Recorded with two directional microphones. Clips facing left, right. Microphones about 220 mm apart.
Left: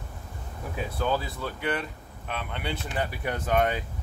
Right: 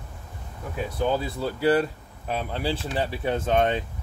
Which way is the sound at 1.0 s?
25° right (ahead or behind).